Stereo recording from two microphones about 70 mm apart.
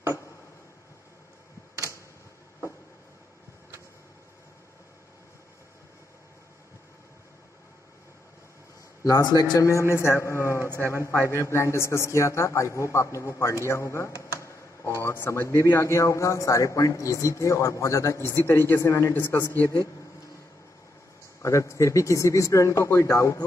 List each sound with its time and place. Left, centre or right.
9.0 s a man's voice: left
9.6 s speech: left
10.6 s a sound: right
10.9 s a man's voice: left
14.3 s a sound: left
15.1 s a man's voice: left
18.4 s speech: left
19.5 s a man's voice: right
21.4 s a man's voice: left